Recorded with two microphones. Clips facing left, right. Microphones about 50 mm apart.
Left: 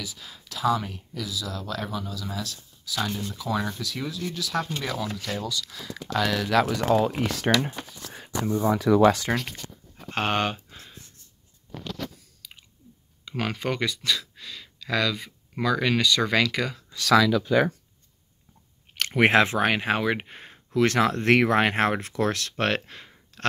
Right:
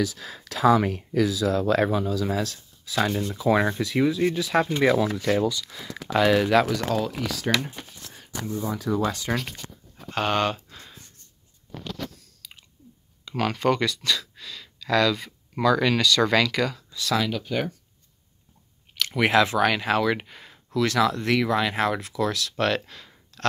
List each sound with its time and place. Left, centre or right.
0.0 s speech: right
1.3 s speech: right
5.5 s speech: centre
6.7 s speech: centre
7.0 s speech: left
7.2 s speech: left
8.6 s speech: left
10.1 s speech: left
12.4 s chewing: centre
13.4 s speech: centre
16.9 s speech: left
19.1 s speech: left